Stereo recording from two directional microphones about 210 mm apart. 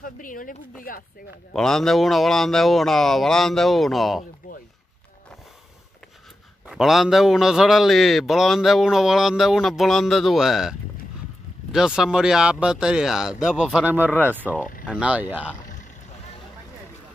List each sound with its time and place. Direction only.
0.0 s speech: 40° left (ahead or behind)
1.5 s a man's voice: centre (ahead or behind)
6.7 s a man's voice: centre (ahead or behind)